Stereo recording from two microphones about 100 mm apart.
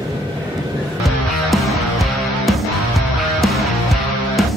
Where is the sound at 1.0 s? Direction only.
Centre (ahead or behind).